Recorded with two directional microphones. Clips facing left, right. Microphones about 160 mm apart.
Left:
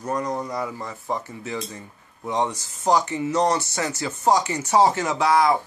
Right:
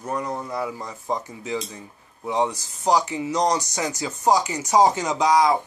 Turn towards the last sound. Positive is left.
turn(degrees=-15)  # may be behind; listen again after turning